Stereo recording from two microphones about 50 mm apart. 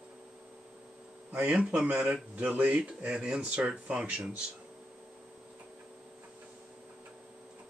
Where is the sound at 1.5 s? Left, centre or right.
Right.